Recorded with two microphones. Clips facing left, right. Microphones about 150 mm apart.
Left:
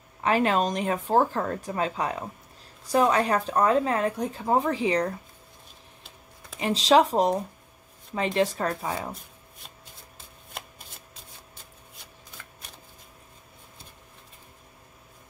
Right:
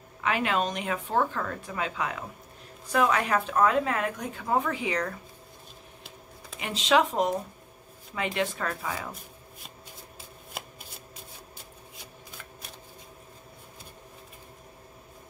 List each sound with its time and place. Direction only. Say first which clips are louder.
0.2 s speech: left 4 dB; 35° left (ahead or behind)
6.6 s speech: left 4 dB; 35° left (ahead or behind)
10.1 s shuffling cards: even; 5° right (ahead or behind)